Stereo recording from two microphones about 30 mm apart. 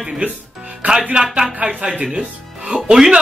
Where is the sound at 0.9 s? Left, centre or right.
Right.